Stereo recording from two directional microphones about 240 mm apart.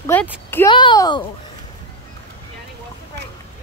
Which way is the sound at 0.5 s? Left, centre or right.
Centre.